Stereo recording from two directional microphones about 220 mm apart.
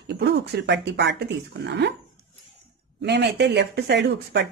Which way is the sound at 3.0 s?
50° right (ahead or behind).